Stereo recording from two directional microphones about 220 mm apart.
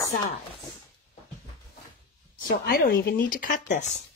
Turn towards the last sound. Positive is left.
turn(degrees=35)  # may be behind; listen again after turning